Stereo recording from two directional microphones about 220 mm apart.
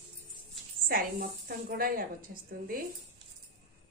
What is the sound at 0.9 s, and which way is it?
A woman's voice, 40° right (ahead or behind).